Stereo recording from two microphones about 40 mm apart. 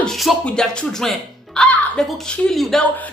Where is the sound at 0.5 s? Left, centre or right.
Centre.